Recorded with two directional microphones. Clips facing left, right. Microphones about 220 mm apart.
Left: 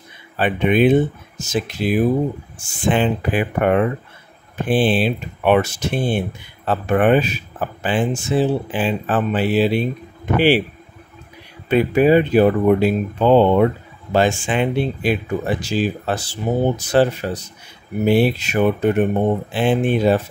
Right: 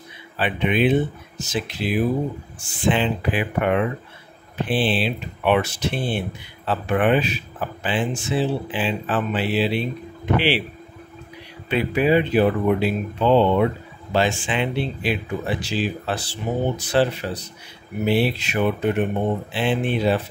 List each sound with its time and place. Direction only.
0.4 s speech: 45° left (ahead or behind)
11.7 s speech: 45° left (ahead or behind)